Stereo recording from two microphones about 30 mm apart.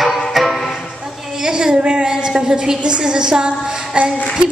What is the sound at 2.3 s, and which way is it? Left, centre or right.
A woman's voice, right.